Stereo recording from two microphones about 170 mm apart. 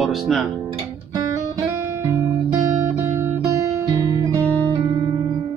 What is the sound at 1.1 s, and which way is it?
Guitar, 20° right (ahead or behind).